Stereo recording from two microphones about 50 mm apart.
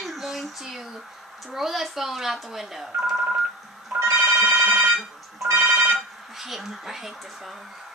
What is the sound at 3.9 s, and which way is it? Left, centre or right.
Telephone, right.